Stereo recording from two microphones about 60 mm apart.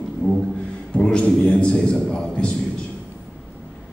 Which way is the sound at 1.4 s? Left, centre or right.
Centre.